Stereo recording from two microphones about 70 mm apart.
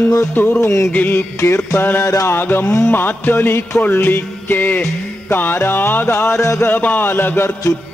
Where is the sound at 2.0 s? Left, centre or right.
Left.